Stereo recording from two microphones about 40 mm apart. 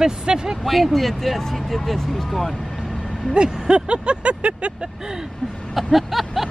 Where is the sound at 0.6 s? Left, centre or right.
Centre.